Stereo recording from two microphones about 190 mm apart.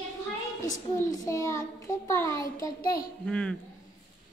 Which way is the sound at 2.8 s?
50° left (ahead or behind).